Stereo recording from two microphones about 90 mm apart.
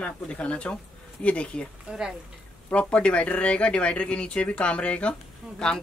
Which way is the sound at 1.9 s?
10° right (ahead or behind).